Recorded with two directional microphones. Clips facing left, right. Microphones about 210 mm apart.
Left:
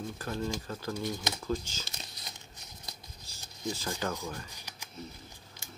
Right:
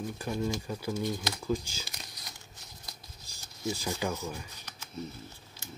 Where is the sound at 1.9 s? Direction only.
25° left (ahead or behind).